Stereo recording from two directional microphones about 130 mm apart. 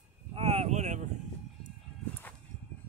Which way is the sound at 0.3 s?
50° right (ahead or behind).